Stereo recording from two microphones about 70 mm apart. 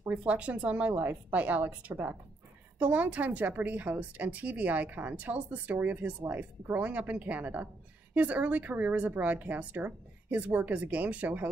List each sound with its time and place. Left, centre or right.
0.1 s speech: centre